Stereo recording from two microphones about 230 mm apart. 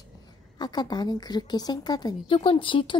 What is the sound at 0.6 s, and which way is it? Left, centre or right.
A woman's voice, centre.